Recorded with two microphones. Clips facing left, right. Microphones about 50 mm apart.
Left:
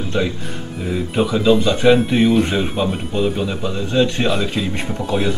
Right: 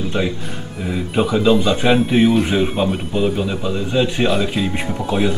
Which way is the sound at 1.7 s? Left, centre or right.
Centre.